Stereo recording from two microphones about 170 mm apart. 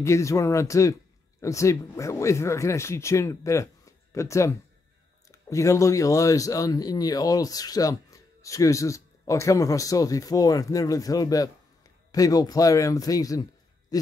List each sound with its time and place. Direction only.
0.0 s speech: 15° left (ahead or behind)